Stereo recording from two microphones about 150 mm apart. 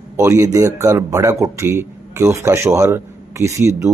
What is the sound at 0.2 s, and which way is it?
A man's voice, 20° right (ahead or behind).